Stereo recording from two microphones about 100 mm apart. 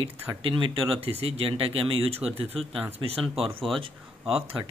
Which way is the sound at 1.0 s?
80° right.